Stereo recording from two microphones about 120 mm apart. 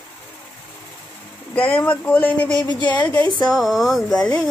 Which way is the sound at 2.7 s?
40° left (ahead or behind).